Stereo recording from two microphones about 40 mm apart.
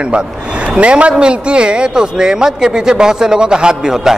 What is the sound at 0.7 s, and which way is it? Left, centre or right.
A man's voice, right.